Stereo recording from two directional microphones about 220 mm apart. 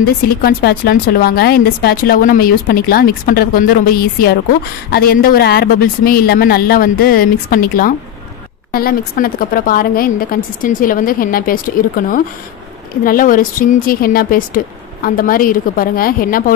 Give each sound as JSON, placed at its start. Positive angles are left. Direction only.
{"t": 0.0, "sound": "a woman's voice", "side_deg": 40}